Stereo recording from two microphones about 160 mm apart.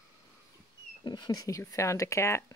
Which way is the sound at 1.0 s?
25° left (ahead or behind).